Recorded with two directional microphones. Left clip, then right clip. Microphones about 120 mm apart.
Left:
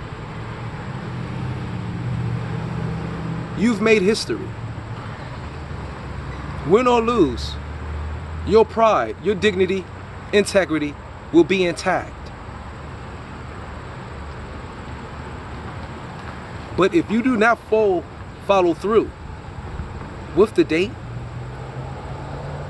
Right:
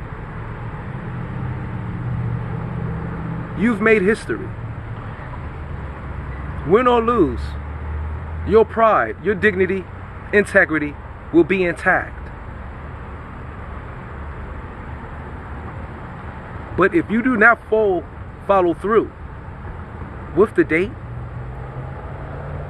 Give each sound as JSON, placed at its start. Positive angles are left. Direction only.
{"t": 3.5, "sound": "speech", "side_deg": 25}
{"t": 6.7, "sound": "speech", "side_deg": 20}
{"t": 8.5, "sound": "speech", "side_deg": 20}
{"t": 16.7, "sound": "speech", "side_deg": 25}
{"t": 20.3, "sound": "speech", "side_deg": 20}